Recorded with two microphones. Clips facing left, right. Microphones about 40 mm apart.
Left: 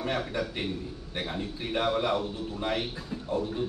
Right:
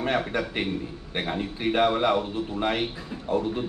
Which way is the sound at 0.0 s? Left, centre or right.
Right.